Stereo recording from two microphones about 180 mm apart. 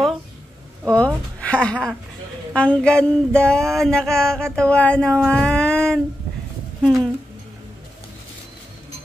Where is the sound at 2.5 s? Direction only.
5° left (ahead or behind).